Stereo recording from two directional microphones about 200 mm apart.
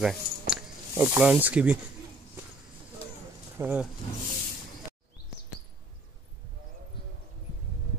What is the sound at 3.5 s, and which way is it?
Speech, 10° right (ahead or behind).